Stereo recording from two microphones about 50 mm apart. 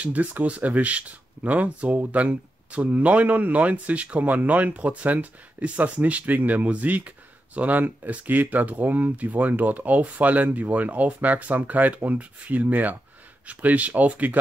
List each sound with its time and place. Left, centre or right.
0.0 s speech: right